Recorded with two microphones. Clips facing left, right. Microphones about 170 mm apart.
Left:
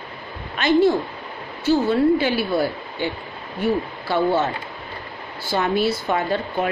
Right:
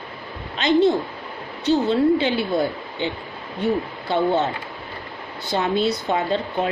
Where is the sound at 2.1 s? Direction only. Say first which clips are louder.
Even; 20° right (ahead or behind).